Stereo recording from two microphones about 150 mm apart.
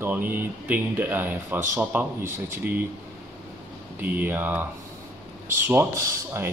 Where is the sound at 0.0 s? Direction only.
15° right (ahead or behind).